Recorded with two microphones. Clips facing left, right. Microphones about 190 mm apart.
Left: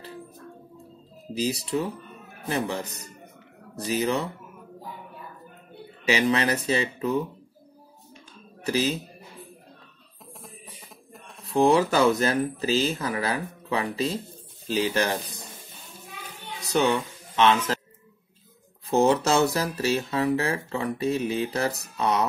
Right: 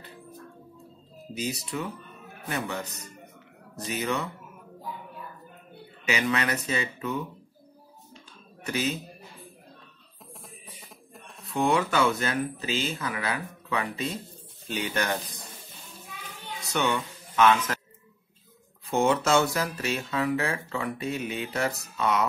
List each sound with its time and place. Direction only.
1.3 s speech: 30° left (ahead or behind)
6.0 s speech: 30° left (ahead or behind)
8.6 s speech: 35° left (ahead or behind)
11.4 s speech: 35° left (ahead or behind)
16.7 s speech: 35° left (ahead or behind)
18.9 s speech: 35° left (ahead or behind)